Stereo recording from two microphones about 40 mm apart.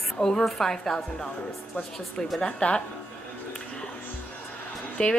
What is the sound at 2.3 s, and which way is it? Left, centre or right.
Speech, centre.